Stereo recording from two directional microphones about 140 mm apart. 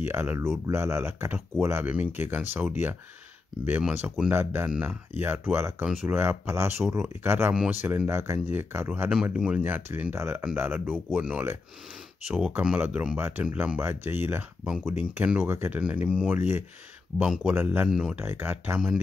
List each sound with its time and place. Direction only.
0.0 s speech: 15° right (ahead or behind)
14.6 s speech: 5° right (ahead or behind)
18.2 s speech: 15° right (ahead or behind)